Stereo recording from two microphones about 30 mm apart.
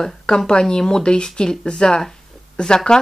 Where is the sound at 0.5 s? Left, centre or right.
Left.